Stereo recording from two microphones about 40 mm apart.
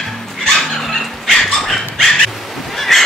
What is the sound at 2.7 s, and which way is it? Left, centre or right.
Fowl, centre.